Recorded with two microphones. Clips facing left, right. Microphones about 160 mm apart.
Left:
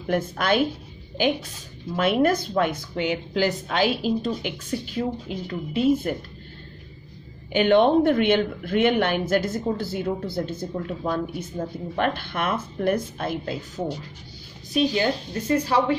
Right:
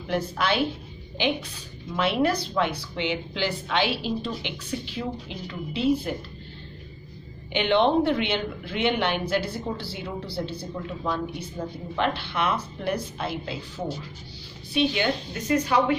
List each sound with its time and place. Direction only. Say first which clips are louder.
0.0 s a woman's voice: left 2 dB; 50° left (ahead or behind)
7.5 s a woman's voice: left 4 dB; 45° left (ahead or behind); by 16.0 s 30° left (ahead or behind)